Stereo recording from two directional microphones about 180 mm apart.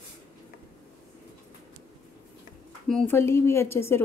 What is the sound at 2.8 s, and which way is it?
Speech, 5° left (ahead or behind).